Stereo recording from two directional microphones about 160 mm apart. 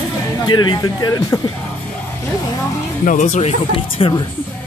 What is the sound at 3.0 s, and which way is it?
Speech, 50° left (ahead or behind).